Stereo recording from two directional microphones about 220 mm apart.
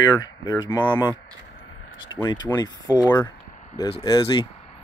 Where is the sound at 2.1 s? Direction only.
20° left (ahead or behind).